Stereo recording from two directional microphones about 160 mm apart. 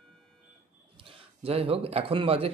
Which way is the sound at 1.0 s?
35° right (ahead or behind).